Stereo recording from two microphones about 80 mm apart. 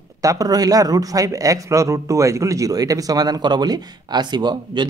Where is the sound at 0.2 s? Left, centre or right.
Right.